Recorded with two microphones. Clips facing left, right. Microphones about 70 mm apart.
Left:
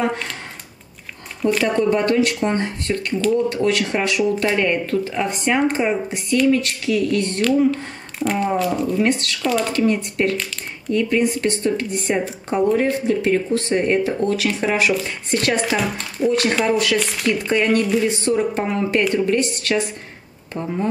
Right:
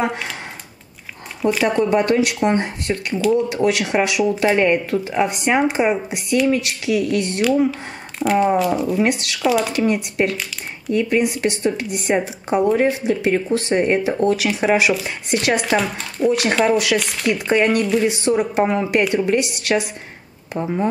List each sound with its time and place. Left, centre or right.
0.0 s speech: centre
1.4 s speech: centre
16.3 s speech: centre